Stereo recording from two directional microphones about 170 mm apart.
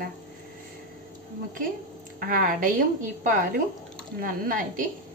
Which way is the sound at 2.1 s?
55° right (ahead or behind).